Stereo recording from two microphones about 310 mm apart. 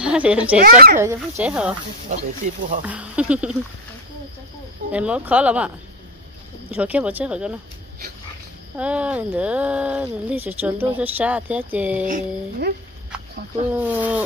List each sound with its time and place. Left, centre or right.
0.0 s speech: centre
0.6 s speech: right
1.4 s speech: centre
2.0 s speech: right
2.9 s speech: centre
4.9 s speech: centre
6.7 s speech: centre
8.7 s speech: centre
12.1 s speech: right
13.7 s speech: centre